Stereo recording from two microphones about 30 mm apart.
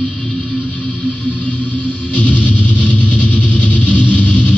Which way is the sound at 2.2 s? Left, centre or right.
Left.